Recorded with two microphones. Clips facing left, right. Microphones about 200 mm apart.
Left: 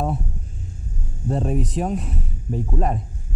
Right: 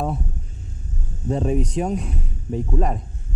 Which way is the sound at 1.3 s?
Centre (ahead or behind).